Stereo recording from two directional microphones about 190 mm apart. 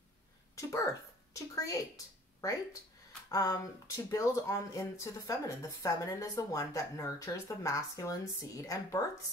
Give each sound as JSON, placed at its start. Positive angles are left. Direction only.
{"t": 0.6, "sound": "speech", "side_deg": 15}
{"t": 3.3, "sound": "speech", "side_deg": 20}